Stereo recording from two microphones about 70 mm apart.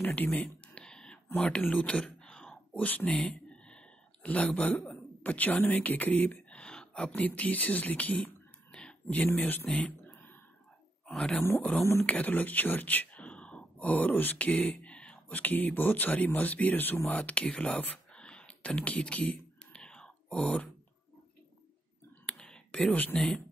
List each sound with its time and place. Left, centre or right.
0.0 s a sound: left
1.3 s speech: left
3.4 s a sound: centre
7.1 s speech: left
9.7 s speech: centre
11.1 s speech: centre
11.8 s speech: left
12.1 s speech: left
19.8 s whispering: centre
22.2 s a sound: centre